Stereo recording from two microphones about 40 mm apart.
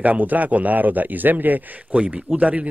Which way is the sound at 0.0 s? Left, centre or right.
Right.